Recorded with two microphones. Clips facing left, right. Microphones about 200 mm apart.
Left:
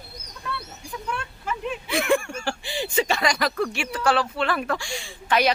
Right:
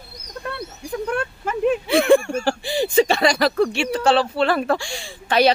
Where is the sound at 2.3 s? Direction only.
35° right (ahead or behind).